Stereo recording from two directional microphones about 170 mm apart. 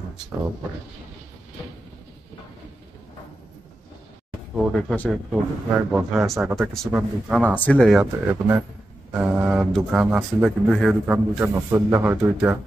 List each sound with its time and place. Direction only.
4.7 s speech: 5° left (ahead or behind)
5.3 s speech: 5° right (ahead or behind)
7.5 s speech: 10° left (ahead or behind)
8.0 s speech: 15° right (ahead or behind)